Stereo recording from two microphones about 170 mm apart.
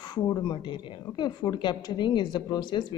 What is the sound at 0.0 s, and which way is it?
A woman's voice, 25° left (ahead or behind).